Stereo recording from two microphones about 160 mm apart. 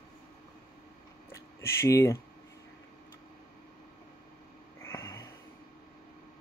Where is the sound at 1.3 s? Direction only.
20° left (ahead or behind).